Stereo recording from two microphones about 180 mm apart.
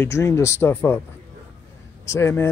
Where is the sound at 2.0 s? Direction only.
15° left (ahead or behind).